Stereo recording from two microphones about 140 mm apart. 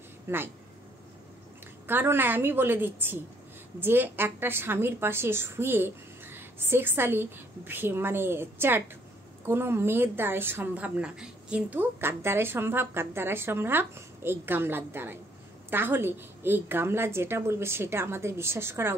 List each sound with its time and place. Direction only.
0.3 s a woman's voice: 15° right (ahead or behind)
1.9 s a woman's voice: 15° right (ahead or behind)